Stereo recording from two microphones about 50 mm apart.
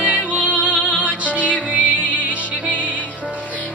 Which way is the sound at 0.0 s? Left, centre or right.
Right.